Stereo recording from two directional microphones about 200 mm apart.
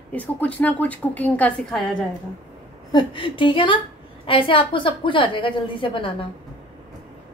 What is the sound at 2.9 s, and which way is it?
A woman's voice, 20° left (ahead or behind).